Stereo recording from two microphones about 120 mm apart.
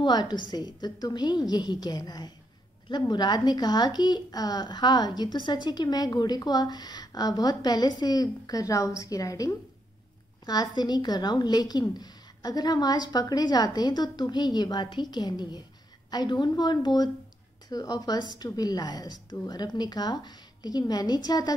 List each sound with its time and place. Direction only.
0.0 s speech: 35° left (ahead or behind)